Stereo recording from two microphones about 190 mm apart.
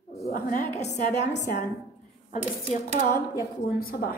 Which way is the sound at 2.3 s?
40° left (ahead or behind).